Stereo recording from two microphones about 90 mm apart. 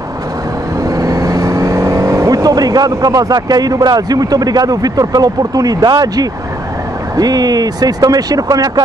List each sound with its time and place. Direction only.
0.8 s speech: 40° right (ahead or behind)